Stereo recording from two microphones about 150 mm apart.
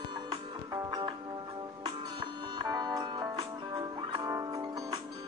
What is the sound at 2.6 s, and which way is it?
Music, 25° right (ahead or behind).